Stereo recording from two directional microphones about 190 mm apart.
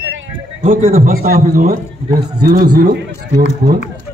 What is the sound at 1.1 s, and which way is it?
A man's voice, 50° right (ahead or behind).